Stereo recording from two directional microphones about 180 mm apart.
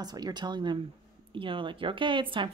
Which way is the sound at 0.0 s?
20° right (ahead or behind).